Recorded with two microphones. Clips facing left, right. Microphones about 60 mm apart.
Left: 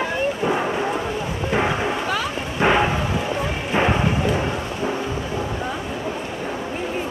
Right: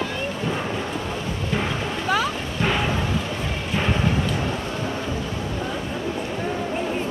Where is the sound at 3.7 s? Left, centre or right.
Left.